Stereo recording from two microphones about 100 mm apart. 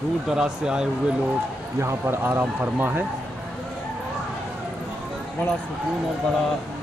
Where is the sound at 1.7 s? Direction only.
25° right (ahead or behind).